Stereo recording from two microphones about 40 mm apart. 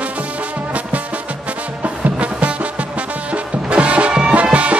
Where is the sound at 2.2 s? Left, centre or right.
Right.